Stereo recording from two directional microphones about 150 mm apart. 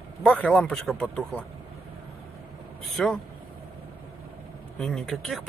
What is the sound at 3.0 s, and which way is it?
Speech, 5° left (ahead or behind).